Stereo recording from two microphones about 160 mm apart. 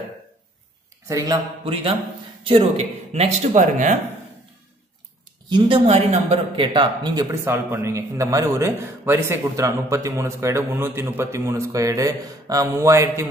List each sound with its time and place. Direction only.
1.0 s speech: 20° right (ahead or behind); by 4.0 s 50° right (ahead or behind)
5.5 s speech: 25° right (ahead or behind)
5.9 s speech: 40° right (ahead or behind); by 13.3 s 15° right (ahead or behind)